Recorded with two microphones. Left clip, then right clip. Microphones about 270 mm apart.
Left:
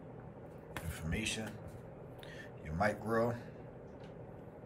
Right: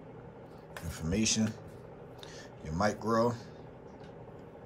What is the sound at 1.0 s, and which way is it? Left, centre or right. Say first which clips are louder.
Speech: right 8 dB; centre.